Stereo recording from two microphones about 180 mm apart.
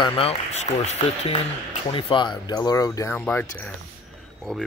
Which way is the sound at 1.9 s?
25° left (ahead or behind).